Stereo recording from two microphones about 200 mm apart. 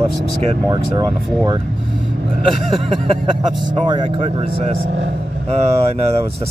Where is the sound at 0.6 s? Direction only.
20° right (ahead or behind).